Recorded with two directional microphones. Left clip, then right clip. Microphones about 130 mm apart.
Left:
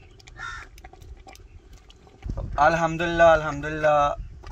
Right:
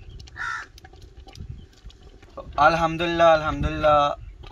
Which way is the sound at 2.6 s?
20° left (ahead or behind).